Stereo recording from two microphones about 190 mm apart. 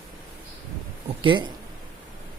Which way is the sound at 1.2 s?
25° right (ahead or behind).